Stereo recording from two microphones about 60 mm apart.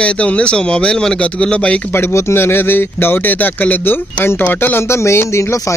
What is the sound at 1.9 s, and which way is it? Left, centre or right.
Speech, left.